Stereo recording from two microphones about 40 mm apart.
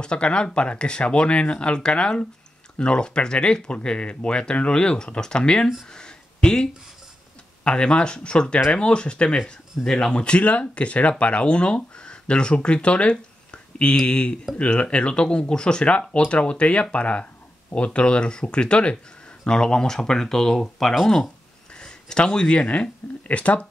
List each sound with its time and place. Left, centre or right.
0.0 s speech: left
5.9 s a sound: centre
7.6 s speech: left
9.8 s speech: centre
10.1 s speech: left; by 20.9 s centre
21.7 s a sound: left
22.5 s speech: left
23.2 s speech: left